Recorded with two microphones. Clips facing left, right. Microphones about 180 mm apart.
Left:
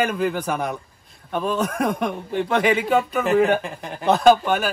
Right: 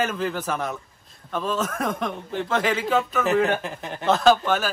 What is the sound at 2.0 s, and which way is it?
A man's voice, 10° left (ahead or behind).